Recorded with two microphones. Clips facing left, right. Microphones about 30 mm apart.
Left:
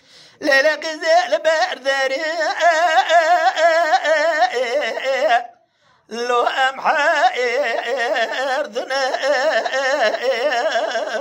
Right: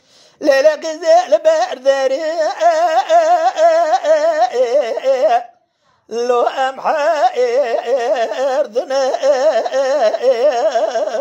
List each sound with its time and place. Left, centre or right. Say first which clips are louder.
0.4 s speech: right 4 dB; left
8.8 s carnatic music: right 4 dB; left